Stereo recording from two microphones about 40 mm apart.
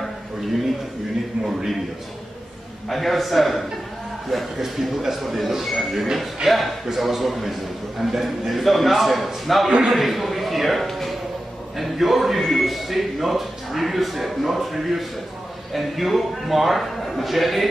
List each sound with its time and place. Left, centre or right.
2.9 s a man's voice: centre